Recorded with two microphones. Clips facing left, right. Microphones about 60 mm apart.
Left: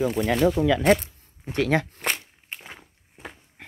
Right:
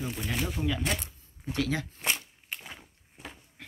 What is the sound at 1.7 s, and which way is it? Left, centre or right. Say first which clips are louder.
Speech: left 7 dB; left.